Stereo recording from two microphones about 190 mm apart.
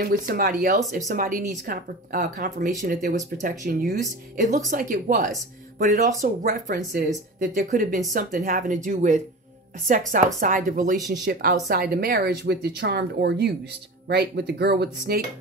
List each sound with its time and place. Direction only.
0.0 s speech: 50° right (ahead or behind)
4.4 s a woman's voice: 40° right (ahead or behind)
11.2 s speech: 60° right (ahead or behind)